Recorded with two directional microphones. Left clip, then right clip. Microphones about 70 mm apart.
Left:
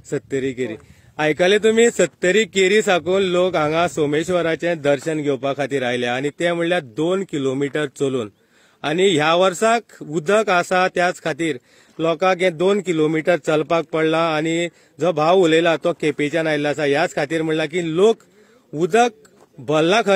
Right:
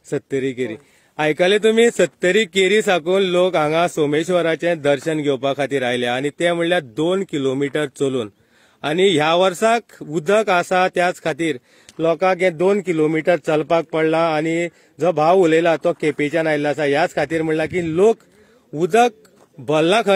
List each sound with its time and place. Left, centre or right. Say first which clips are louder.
0.1 s a man's voice: right 1 dB; right
5.6 s a man's voice: right 1 dB; right